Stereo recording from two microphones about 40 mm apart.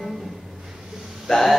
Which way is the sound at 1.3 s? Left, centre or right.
Centre.